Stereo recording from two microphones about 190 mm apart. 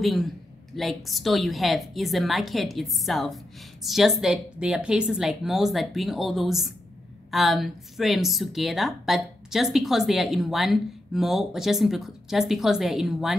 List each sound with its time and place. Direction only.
0.0 s a woman's voice: centre (ahead or behind)